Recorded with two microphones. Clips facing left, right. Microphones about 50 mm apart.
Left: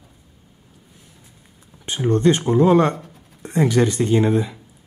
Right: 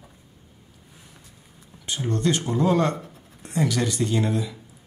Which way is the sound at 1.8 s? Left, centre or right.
Left.